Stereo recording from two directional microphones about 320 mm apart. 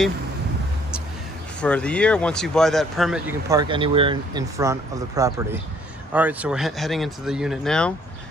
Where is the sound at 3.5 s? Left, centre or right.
Centre.